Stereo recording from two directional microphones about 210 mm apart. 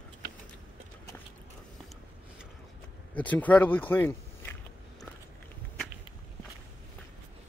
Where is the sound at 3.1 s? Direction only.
5° left (ahead or behind).